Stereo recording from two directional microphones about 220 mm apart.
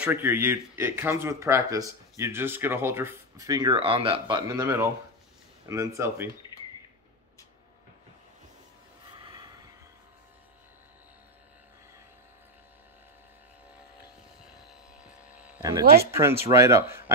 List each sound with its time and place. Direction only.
0.0 s speech: 10° right (ahead or behind)
9.2 s snort: 20° right (ahead or behind)
14.7 s a sound: 5° right (ahead or behind)
15.8 s speech: 45° right (ahead or behind)
16.2 s speech: 10° right (ahead or behind)